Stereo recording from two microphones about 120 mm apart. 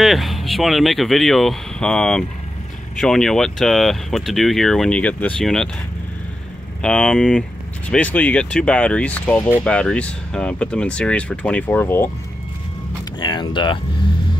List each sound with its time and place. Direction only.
0.0 s speech: centre (ahead or behind)
6.8 s speech: 10° left (ahead or behind)
13.2 s speech: 40° left (ahead or behind)